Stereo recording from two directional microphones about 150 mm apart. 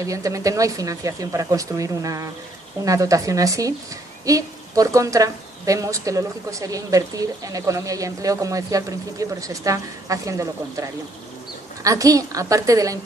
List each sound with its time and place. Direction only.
0.0 s a woman's voice: 20° right (ahead or behind)